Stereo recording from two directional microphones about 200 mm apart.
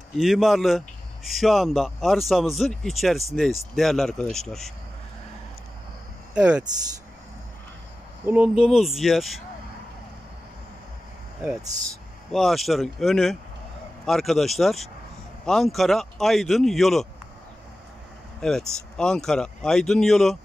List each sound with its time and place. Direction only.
0.2 s speech: centre (ahead or behind)
6.3 s speech: 5° right (ahead or behind)
8.3 s speech: 5° right (ahead or behind)
12.3 s speech: centre (ahead or behind)
18.4 s speech: 5° left (ahead or behind)